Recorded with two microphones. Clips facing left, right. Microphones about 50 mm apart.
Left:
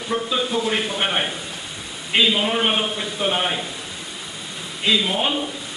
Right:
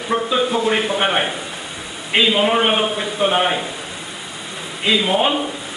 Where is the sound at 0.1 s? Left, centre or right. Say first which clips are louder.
Right 4 dB; centre.